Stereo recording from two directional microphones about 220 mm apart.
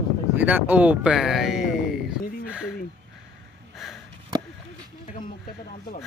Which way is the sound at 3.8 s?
Centre (ahead or behind).